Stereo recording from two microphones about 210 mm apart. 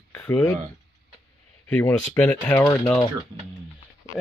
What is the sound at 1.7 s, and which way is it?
Speech, 10° left (ahead or behind).